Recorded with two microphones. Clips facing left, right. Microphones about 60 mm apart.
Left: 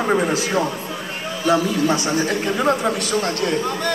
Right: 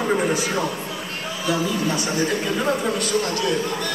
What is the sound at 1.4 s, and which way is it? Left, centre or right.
Speech, left.